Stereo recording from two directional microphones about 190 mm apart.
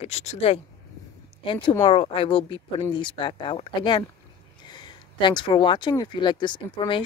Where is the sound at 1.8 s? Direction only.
25° left (ahead or behind).